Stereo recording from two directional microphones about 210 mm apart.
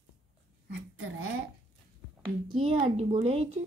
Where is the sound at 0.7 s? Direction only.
70° right (ahead or behind).